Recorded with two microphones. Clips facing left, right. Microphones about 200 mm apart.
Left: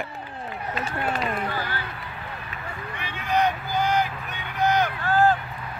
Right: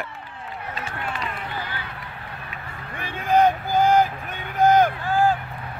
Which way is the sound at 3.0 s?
50° right (ahead or behind).